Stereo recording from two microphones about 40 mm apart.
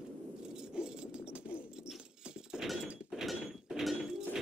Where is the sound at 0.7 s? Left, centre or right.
Right.